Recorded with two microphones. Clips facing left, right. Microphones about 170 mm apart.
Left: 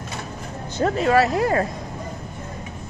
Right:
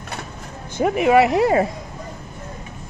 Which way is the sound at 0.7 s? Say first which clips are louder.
Right 3 dB; 15° right (ahead or behind).